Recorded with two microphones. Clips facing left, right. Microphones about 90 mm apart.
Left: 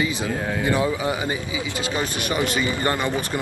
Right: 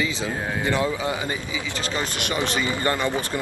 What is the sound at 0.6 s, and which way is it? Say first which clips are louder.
A man's voice: left 2 dB; 20° left (ahead or behind).